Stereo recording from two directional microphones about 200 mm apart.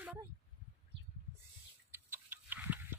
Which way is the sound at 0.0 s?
10° right (ahead or behind).